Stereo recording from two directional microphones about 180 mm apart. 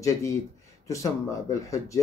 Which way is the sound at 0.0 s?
15° left (ahead or behind).